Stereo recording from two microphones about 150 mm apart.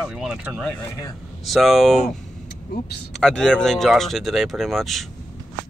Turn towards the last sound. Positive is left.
turn(degrees=0)  # may be behind; listen again after turning